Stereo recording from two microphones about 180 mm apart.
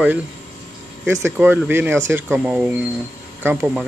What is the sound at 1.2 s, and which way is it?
Speech, 10° right (ahead or behind).